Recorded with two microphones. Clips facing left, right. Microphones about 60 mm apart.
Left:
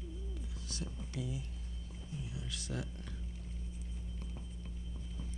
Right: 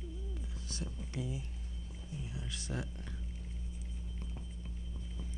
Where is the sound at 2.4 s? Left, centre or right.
Right.